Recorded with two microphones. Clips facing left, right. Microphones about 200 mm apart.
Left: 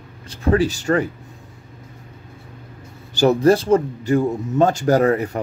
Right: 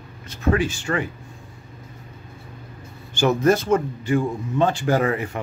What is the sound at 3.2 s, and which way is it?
Speech, 35° left (ahead or behind).